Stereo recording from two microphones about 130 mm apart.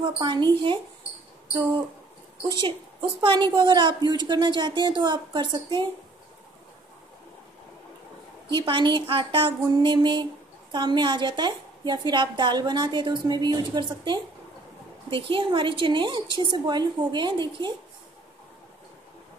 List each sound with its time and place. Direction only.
0.0 s a woman's voice: 35° right (ahead or behind)
2.4 s a woman's voice: 35° right (ahead or behind)
8.5 s a woman's voice: 40° right (ahead or behind)